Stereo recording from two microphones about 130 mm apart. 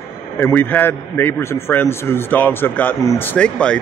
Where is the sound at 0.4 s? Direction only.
15° left (ahead or behind).